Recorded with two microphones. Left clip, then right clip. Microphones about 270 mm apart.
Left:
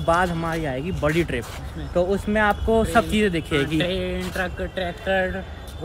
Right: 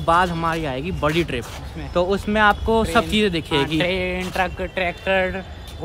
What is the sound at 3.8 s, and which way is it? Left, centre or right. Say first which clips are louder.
Speech: right 3 dB; right.